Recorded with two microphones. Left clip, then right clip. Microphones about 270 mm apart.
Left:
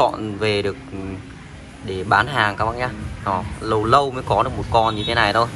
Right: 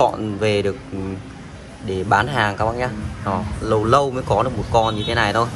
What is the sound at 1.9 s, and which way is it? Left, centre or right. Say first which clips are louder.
Speech: even; centre.